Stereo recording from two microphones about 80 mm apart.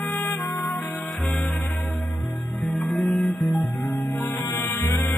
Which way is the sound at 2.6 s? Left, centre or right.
Centre.